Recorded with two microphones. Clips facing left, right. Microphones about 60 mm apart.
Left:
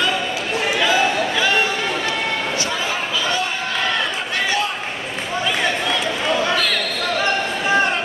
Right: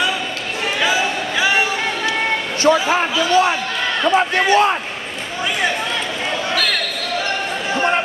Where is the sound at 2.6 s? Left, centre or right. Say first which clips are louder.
Right 8 dB; right.